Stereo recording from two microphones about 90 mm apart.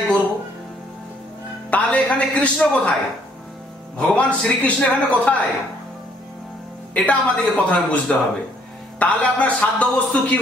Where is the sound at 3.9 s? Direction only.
5° left (ahead or behind).